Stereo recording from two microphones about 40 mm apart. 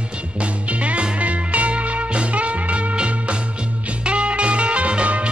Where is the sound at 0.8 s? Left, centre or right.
Right.